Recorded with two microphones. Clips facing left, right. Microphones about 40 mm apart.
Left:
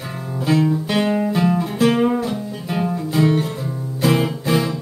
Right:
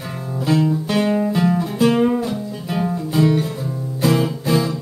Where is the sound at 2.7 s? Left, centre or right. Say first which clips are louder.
Even; centre.